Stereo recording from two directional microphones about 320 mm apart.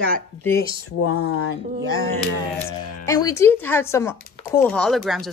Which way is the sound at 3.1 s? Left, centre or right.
Centre.